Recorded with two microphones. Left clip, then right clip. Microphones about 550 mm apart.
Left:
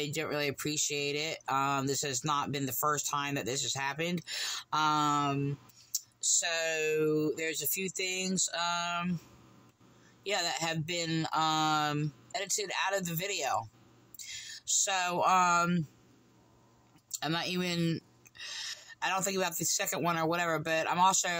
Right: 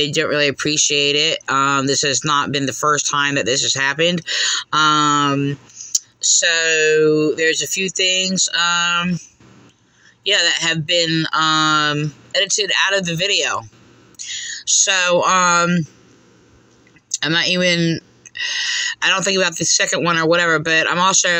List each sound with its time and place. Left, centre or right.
0.0 s speech: left
10.2 s speech: left
17.1 s speech: left